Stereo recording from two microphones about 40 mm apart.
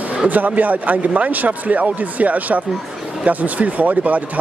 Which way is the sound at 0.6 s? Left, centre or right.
Right.